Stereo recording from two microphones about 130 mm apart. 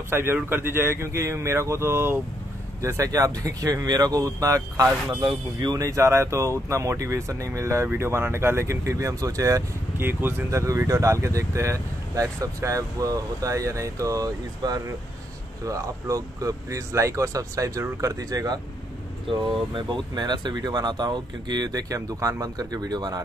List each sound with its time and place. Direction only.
0.1 s speech: 15° right (ahead or behind)
19.7 s speech: 35° right (ahead or behind)